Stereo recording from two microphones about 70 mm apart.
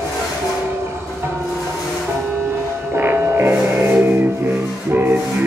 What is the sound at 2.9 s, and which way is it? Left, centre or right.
Music, right.